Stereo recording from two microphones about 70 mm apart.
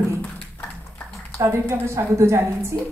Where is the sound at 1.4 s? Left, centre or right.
Right.